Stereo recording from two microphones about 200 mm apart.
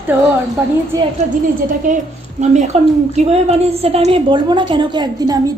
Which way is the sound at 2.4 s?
35° right (ahead or behind).